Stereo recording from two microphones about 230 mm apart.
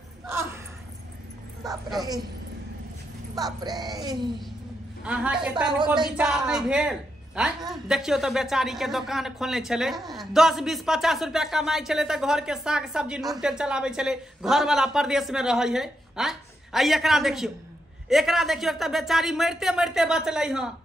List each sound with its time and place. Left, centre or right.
0.3 s a sound: centre
2.0 s speech: centre
3.3 s speech: centre
5.0 s speech: centre